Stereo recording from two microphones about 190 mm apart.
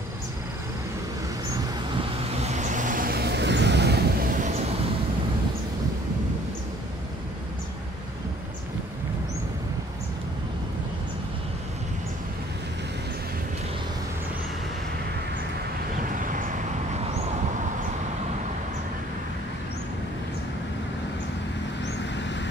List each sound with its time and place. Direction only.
2.0 s vehicle: 35° right (ahead or behind)
16.0 s vehicle: 45° right (ahead or behind)